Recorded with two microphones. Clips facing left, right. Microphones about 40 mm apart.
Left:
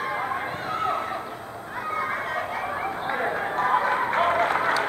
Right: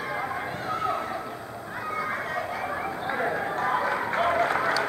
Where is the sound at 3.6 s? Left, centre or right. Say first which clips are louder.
Left 5 dB; left.